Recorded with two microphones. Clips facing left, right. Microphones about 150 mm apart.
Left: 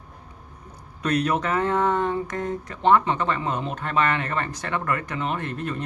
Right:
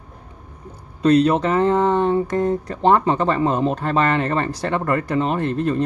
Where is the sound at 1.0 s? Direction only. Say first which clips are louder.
Right 8 dB; 30° right (ahead or behind).